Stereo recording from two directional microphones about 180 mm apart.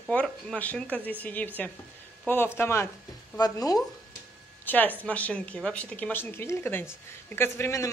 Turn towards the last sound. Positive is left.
turn(degrees=15)  # may be behind; listen again after turning